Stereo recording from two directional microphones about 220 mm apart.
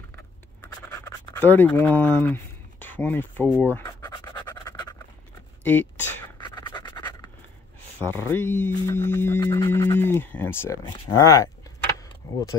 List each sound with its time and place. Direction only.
0.1 s scratch: 10° left (ahead or behind)
5.6 s speech: 10° left (ahead or behind)
6.4 s scratch: 20° left (ahead or behind)
8.0 s speech: 10° left (ahead or behind)